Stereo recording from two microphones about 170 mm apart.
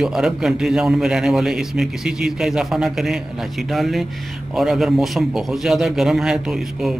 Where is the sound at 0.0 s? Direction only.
Centre (ahead or behind).